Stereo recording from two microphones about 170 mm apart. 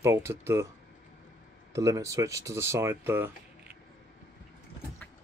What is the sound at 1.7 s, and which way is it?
Speech, 20° right (ahead or behind).